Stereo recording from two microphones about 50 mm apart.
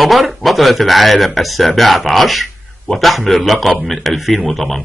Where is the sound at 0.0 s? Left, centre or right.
Centre.